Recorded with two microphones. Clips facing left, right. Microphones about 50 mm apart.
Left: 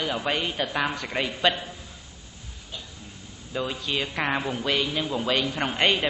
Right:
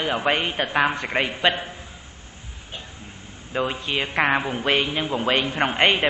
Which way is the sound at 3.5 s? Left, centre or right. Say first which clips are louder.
Right 4 dB; right.